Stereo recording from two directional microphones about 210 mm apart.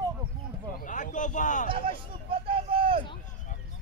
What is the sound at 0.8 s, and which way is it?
Speech, 40° left (ahead or behind).